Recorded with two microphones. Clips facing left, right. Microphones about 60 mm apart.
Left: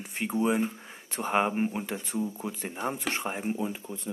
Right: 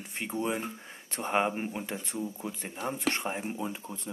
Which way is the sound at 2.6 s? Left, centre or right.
Centre.